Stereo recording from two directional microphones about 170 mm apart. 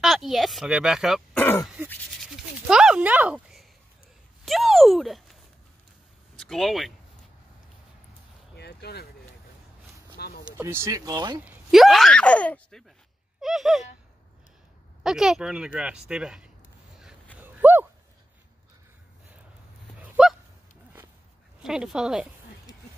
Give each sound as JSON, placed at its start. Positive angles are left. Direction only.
{"t": 0.0, "sound": "speech", "side_deg": 0}
{"t": 1.4, "sound": "throat clearing", "side_deg": 10}
{"t": 2.1, "sound": "a sound", "side_deg": -5}
{"t": 4.5, "sound": "speech", "side_deg": 0}
{"t": 8.5, "sound": "a sound", "side_deg": 70}
{"t": 10.2, "sound": "a sound", "side_deg": 70}
{"t": 10.6, "sound": "speech", "side_deg": -15}
{"t": 11.7, "sound": "speech", "side_deg": 0}
{"t": 15.0, "sound": "speech", "side_deg": -5}
{"t": 17.4, "sound": "a sound", "side_deg": -10}
{"t": 20.0, "sound": "honk", "side_deg": -5}
{"t": 21.6, "sound": "speech", "side_deg": -5}